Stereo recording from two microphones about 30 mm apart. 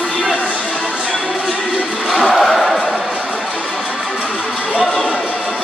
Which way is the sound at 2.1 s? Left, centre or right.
Centre.